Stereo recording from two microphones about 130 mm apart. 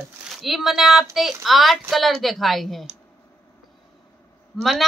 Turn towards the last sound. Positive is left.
turn(degrees=0)  # may be behind; listen again after turning